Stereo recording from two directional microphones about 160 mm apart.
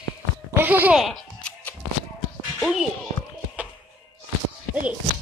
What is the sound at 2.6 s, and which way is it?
Speech, centre (ahead or behind).